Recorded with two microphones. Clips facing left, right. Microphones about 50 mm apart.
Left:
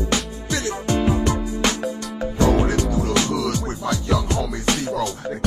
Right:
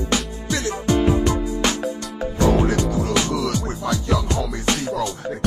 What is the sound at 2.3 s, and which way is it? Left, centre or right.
Music, left.